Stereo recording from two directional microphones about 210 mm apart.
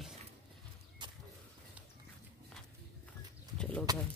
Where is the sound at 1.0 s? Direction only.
20° right (ahead or behind).